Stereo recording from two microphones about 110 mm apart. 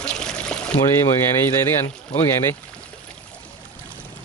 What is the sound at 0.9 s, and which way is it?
Speech, 25° left (ahead or behind).